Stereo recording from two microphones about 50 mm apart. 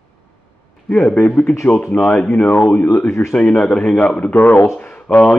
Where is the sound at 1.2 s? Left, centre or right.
Left.